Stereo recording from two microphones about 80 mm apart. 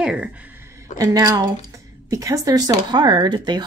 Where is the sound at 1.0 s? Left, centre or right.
Right.